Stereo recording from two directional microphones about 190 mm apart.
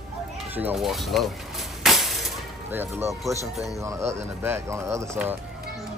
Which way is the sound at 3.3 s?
15° right (ahead or behind).